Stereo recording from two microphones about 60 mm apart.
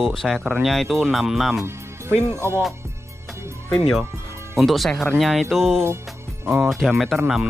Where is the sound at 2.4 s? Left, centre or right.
Right.